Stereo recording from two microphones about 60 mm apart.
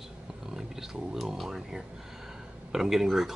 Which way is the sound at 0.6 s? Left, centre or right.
Centre.